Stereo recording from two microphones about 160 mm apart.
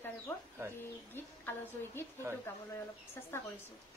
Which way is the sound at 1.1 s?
15° left (ahead or behind).